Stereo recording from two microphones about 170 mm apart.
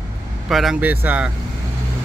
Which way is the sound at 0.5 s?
Centre (ahead or behind).